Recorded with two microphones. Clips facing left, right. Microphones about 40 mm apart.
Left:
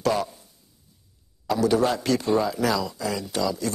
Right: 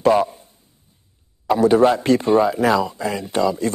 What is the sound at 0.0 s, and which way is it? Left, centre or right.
Speech, right.